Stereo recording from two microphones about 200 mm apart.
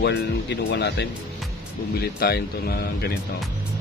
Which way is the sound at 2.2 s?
50° left (ahead or behind).